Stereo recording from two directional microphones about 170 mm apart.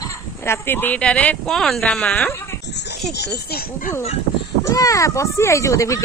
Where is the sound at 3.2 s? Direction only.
75° left (ahead or behind).